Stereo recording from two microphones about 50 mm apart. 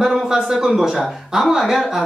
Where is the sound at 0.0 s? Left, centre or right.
Centre.